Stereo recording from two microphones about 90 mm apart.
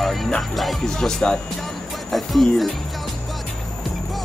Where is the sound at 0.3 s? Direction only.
Centre (ahead or behind).